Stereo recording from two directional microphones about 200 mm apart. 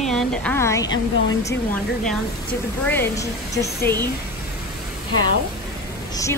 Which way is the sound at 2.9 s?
15° left (ahead or behind).